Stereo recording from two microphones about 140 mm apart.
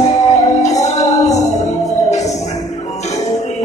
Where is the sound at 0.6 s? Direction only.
55° left (ahead or behind).